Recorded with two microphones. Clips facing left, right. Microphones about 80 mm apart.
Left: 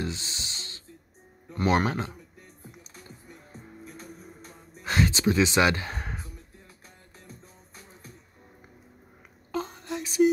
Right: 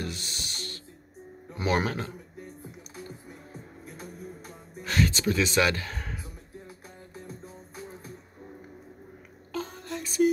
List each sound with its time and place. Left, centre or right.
0.0 s music: left
1.9 s a man's voice: centre
4.8 s gasp: left
9.5 s a sound: left